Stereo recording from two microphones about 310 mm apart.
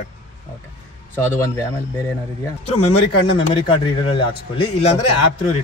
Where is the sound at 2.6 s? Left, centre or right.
Centre.